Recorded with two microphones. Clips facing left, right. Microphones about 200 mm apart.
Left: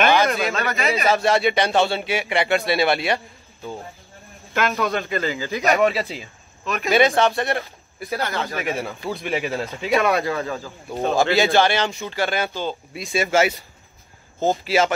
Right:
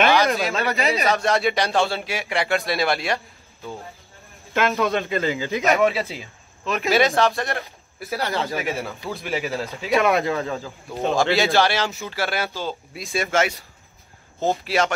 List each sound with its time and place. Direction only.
0.1 s a sound: centre (ahead or behind)
0.6 s speech: 35° right (ahead or behind)
1.0 s speech: centre (ahead or behind)
5.0 s speech: 15° right (ahead or behind)
5.6 s speech: centre (ahead or behind)
6.6 s speech: 25° right (ahead or behind)
6.9 s speech: centre (ahead or behind)
8.2 s speech: 30° right (ahead or behind)
8.5 s speech: centre (ahead or behind)
10.0 s speech: 20° right (ahead or behind)
11.0 s speech: centre (ahead or behind)